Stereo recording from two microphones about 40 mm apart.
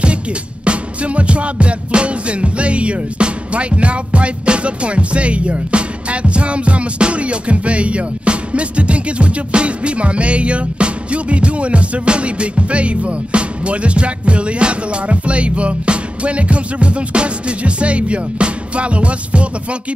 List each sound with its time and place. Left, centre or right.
0.7 s music: right